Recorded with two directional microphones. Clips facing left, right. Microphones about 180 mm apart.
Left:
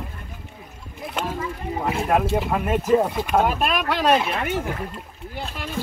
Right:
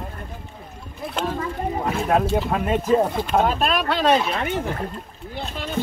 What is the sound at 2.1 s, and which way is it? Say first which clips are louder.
Speech: right 1 dB; 10° left (ahead or behind).